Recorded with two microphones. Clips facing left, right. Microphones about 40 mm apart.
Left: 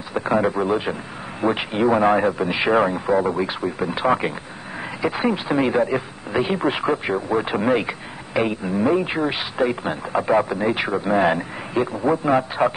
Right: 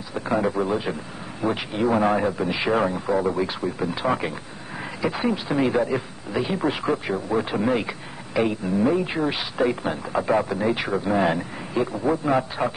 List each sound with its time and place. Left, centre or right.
0.1 s speech: left